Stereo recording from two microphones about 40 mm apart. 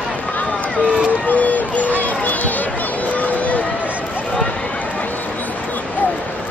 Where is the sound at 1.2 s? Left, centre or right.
Left.